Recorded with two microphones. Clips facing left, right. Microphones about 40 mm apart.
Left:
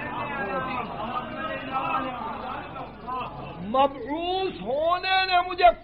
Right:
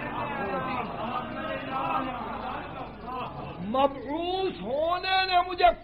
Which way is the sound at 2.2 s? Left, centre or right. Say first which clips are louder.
Left 2 dB; left.